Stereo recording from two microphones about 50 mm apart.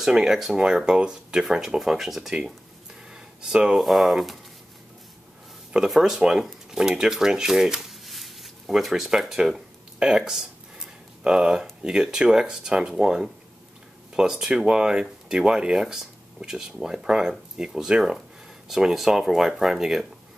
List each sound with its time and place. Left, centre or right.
0.0 s speech: centre
3.1 s a sound: centre
3.8 s speech: centre
5.9 s speech: centre